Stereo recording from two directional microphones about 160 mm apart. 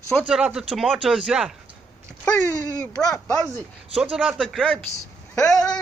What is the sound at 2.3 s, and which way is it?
Speech, 15° left (ahead or behind).